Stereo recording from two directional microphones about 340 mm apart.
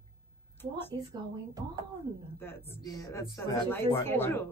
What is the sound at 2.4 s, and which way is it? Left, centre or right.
Speech, centre.